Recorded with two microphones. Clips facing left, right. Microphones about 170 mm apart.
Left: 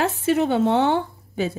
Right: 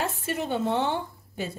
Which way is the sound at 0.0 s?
75° left (ahead or behind).